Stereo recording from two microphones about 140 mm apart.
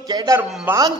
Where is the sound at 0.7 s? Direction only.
10° right (ahead or behind).